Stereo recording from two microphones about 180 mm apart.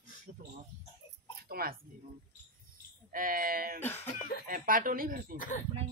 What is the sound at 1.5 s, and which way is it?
Speech, 55° right (ahead or behind).